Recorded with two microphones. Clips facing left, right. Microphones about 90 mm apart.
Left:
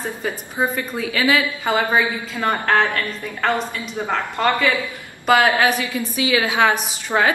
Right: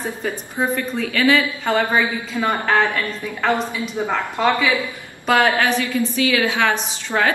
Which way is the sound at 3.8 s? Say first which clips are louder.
Right 1 dB; 5° right (ahead or behind).